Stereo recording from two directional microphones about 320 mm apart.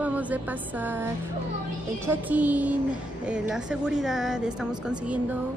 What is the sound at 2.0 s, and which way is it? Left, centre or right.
A woman's voice, centre.